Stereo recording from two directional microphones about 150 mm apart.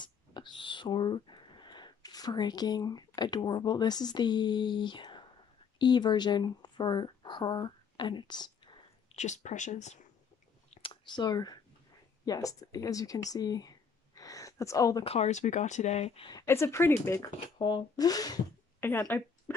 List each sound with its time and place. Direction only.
0.0 s a sound: 30° left (ahead or behind)
3.2 s speech: 30° left (ahead or behind)
9.1 s speech: 50° left (ahead or behind)
10.7 s a sound: 35° left (ahead or behind)
12.3 s speech: 20° left (ahead or behind)
15.0 s speech: 45° left (ahead or behind)
16.3 s speech: 20° left (ahead or behind)
18.9 s speech: 15° left (ahead or behind)